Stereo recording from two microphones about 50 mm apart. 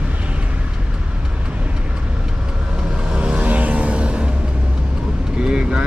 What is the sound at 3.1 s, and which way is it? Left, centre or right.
Vehicle, right.